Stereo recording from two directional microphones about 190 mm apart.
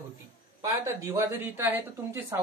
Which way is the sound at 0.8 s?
15° right (ahead or behind).